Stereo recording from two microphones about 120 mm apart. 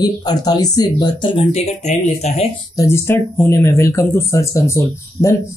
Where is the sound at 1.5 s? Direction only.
80° left.